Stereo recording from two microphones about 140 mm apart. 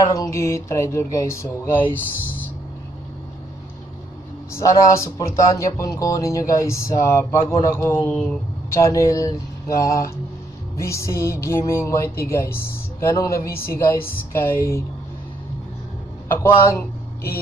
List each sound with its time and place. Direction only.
0.0 s speech: 25° left (ahead or behind)
4.5 s speech: 20° left (ahead or behind)
8.7 s speech: 20° left (ahead or behind)
13.5 s a woman's voice: 90° left
13.7 s a woman's voice: 20° left (ahead or behind)
16.3 s a man's voice: 20° left (ahead or behind)